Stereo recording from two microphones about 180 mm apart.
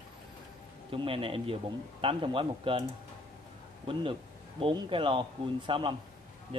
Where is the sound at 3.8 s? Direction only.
30° right (ahead or behind).